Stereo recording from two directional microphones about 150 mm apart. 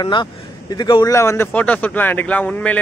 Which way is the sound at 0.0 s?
30° left (ahead or behind).